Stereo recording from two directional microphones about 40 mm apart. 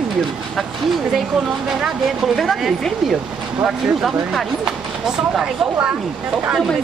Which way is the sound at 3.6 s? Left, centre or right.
Centre.